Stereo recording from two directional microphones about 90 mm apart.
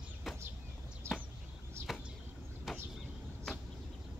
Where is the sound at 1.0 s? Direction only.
30° right (ahead or behind).